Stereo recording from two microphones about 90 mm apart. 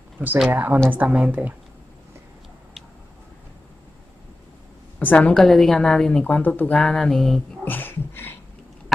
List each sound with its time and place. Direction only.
0.5 s a woman's voice: 20° right (ahead or behind)
4.9 s a woman's voice: 15° left (ahead or behind)
6.2 s a woman's voice: 20° left (ahead or behind)
6.8 s mantra: 5° left (ahead or behind)
7.6 s a sound: 20° left (ahead or behind)